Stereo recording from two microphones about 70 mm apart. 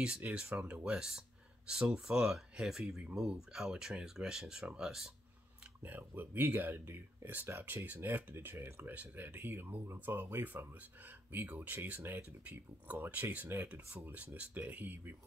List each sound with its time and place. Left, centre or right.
0.2 s speech: centre
5.8 s speech: right
13.0 s speech: right